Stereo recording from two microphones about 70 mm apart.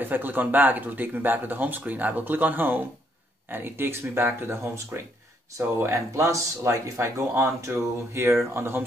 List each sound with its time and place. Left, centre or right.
0.0 s speech: right